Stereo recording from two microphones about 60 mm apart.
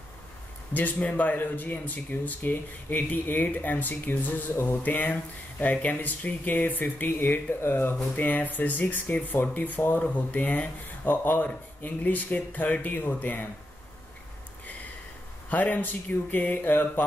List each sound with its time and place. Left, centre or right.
0.7 s speech: left
15.5 s speech: left